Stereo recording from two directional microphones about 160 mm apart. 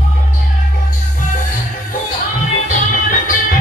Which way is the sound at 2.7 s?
55° left (ahead or behind).